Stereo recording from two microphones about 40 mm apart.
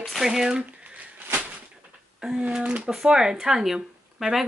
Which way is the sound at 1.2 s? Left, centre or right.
Right.